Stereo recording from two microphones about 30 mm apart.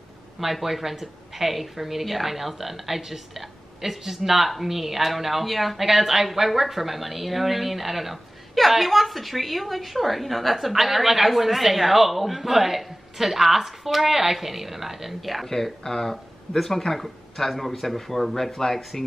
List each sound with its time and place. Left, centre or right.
0.4 s a woman's voice: centre
15.4 s speech: centre